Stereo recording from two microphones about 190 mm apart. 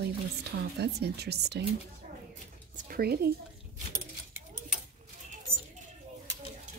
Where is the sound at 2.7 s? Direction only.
50° right (ahead or behind).